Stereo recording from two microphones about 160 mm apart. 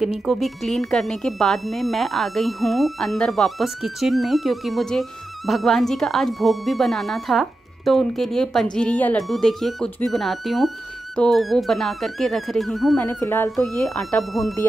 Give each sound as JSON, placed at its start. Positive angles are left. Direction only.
{"t": 0.0, "sound": "speech", "side_deg": 0}
{"t": 12.9, "sound": "speech", "side_deg": 10}
{"t": 13.7, "sound": "speech", "side_deg": 5}